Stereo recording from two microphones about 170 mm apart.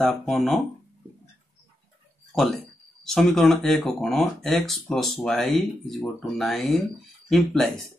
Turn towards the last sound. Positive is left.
turn(degrees=0)  # may be behind; listen again after turning